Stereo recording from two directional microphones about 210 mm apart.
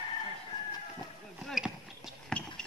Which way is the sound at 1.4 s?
Centre (ahead or behind).